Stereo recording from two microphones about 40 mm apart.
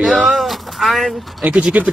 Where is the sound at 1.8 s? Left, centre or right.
Right.